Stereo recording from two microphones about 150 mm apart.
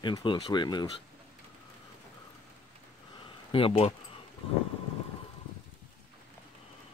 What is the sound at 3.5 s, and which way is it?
Speech, 40° left (ahead or behind).